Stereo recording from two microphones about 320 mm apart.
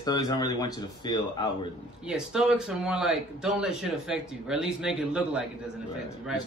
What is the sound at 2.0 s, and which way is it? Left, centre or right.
A man's voice, centre.